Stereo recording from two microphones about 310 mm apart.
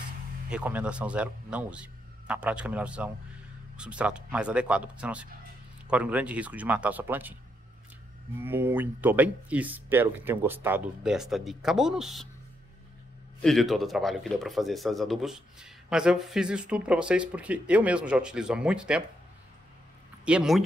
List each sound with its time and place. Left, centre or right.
0.5 s speech: centre
8.4 s speech: centre
13.4 s speech: centre
20.2 s speech: centre